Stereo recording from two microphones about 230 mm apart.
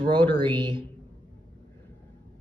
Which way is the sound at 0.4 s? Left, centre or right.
Right.